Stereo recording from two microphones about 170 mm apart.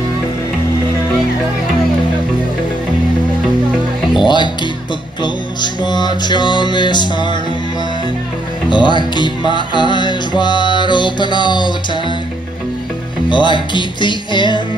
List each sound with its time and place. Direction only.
4.2 s music: 25° left (ahead or behind)
8.6 s speech: 25° left (ahead or behind)
9.1 s music: 25° left (ahead or behind)
13.3 s music: 30° left (ahead or behind)